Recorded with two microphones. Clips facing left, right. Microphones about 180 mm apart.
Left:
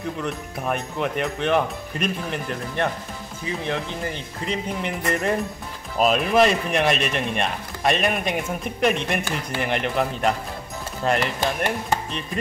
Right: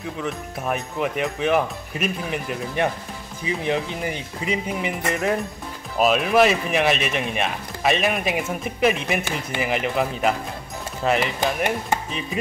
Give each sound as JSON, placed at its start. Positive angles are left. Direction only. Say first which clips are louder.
{"t": 0.2, "sound": "speech", "louder": "even", "side_deg": 0}